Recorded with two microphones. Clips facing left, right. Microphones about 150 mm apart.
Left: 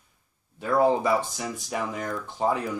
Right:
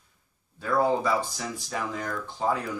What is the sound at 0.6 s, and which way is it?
Speech, 20° left (ahead or behind).